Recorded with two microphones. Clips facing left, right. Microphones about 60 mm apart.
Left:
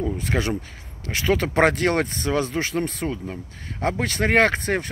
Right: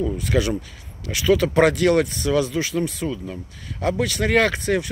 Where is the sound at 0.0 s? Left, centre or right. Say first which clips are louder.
Right 3 dB; left.